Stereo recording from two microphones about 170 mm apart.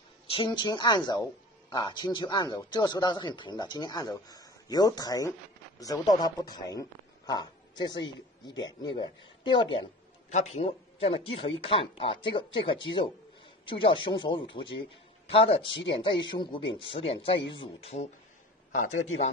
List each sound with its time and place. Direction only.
0.3 s a woman's voice: 30° left (ahead or behind)
10.3 s a woman's voice: 40° left (ahead or behind)
15.7 s speech: 90° left
16.0 s speech: 30° left (ahead or behind)
18.7 s a man's voice: 50° left (ahead or behind)